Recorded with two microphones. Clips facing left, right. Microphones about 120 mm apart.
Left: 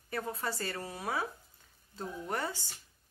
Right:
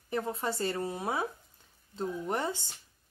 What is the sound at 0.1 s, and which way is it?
Speech, 25° right (ahead or behind).